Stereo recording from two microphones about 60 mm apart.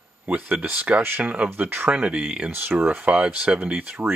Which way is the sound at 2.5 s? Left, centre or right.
Right.